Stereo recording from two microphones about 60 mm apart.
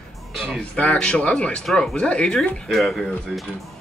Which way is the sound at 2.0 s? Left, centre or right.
Centre.